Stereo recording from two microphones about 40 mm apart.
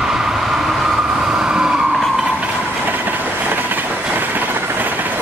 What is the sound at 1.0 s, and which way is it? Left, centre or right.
Vehicle, centre.